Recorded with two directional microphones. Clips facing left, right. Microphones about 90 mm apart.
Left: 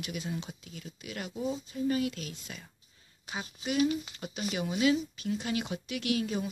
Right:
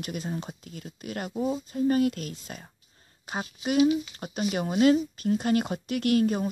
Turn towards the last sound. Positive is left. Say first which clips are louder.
# right 7 dB
turn(degrees=-45)  # may be behind; listen again after turning